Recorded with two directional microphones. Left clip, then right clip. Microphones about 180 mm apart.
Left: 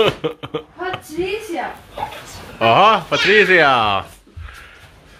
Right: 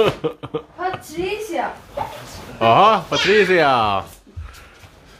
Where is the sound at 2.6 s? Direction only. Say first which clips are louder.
Left 1 dB; centre (ahead or behind).